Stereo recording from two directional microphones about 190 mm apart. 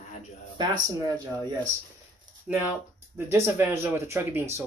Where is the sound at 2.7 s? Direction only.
15° right (ahead or behind).